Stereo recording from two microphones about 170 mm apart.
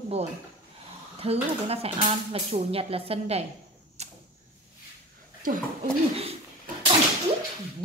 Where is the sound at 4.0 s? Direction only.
40° right (ahead or behind).